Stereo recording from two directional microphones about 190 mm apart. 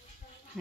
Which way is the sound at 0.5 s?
5° left (ahead or behind).